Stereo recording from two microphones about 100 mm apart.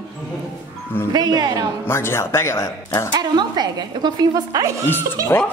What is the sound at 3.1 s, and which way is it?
A woman's voice, 45° right (ahead or behind).